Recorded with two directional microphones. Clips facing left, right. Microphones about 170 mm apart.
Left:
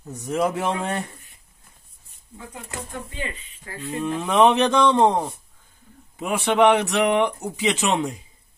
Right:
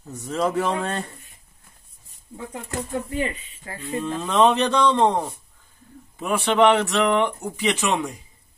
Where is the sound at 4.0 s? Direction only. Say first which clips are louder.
Left 1 dB; 15° left (ahead or behind).